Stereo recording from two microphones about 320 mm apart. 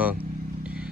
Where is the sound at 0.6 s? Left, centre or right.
Centre.